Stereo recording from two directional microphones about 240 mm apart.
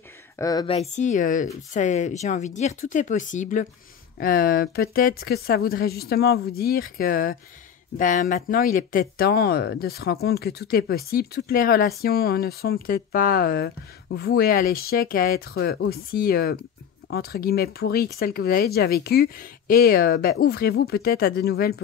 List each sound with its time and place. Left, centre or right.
0.4 s speech: centre; by 21.8 s left